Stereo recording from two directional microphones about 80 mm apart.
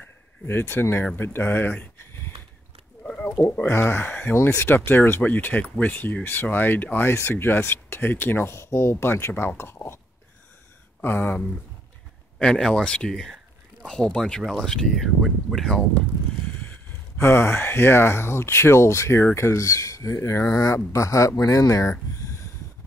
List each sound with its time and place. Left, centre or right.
0.0 s a sound: left
1.1 s speech: left
3.0 s a sound: centre
3.6 s speech: left
4.3 s speech: left
9.3 s speech: centre
9.6 s speech: left
11.0 s speech: left
12.4 s speech: centre
17.2 s speech: left